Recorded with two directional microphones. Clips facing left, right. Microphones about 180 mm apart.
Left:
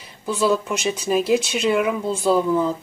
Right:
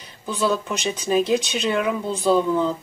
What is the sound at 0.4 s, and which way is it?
Speech, 10° left (ahead or behind).